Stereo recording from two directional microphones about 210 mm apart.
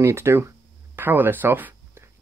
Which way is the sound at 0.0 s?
10° right (ahead or behind).